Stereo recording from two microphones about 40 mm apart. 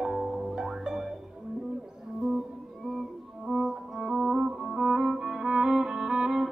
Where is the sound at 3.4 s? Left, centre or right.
Centre.